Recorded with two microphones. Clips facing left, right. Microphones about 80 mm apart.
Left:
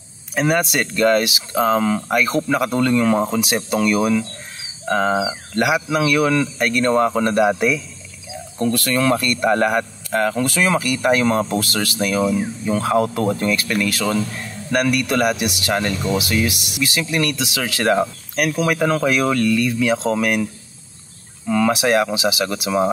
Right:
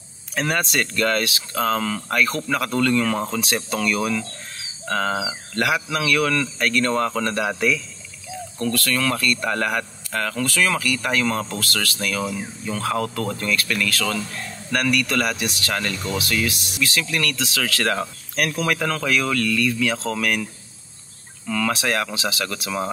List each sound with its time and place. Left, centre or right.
0.3 s speech: centre
18.3 s speech: centre
21.5 s speech: centre